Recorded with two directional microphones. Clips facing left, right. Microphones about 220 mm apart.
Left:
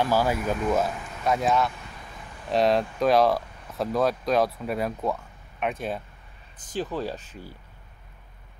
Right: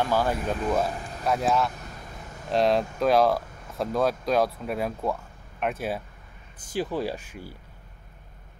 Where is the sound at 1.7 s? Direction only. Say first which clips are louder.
Right 2 dB; 45° right (ahead or behind).